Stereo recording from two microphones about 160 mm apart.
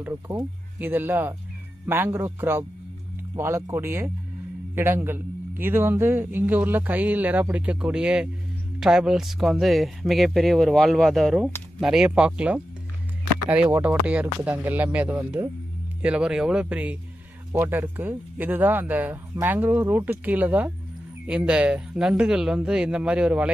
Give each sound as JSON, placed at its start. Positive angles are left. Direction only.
{"t": 0.0, "sound": "a man's voice", "side_deg": -20}